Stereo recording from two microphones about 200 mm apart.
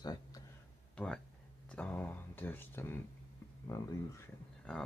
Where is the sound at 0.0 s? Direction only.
20° left (ahead or behind).